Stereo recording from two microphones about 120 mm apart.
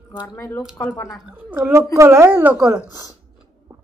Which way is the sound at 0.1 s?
35° left (ahead or behind).